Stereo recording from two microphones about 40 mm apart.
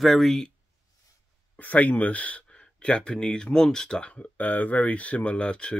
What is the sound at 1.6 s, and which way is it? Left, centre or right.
Speech, left.